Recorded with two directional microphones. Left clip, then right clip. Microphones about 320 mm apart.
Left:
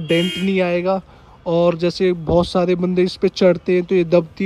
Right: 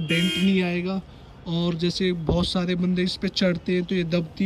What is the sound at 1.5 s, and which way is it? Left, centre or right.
Speech, centre.